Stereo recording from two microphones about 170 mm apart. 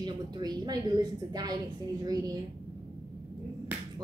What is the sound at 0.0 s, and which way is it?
A woman's voice, 25° right (ahead or behind).